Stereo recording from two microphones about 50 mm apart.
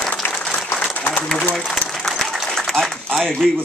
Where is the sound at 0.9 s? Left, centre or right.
Left.